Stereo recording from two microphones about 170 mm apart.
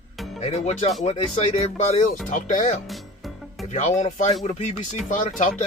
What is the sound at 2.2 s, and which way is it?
Speech, 45° left (ahead or behind).